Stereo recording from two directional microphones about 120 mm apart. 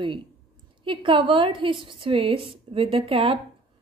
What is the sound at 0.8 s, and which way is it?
A woman's voice, 45° right (ahead or behind).